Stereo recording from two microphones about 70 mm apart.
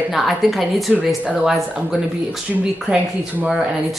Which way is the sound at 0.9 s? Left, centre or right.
Left.